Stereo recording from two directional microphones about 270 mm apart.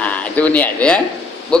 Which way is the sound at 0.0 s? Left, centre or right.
Centre.